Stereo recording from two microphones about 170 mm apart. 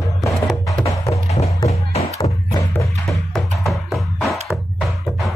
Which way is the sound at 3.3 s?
Centre (ahead or behind).